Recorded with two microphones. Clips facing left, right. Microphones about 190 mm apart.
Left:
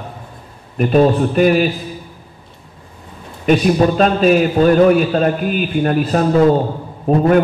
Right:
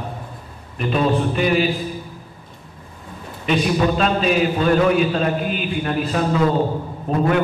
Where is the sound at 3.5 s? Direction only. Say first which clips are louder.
Left 6 dB; 45° left (ahead or behind).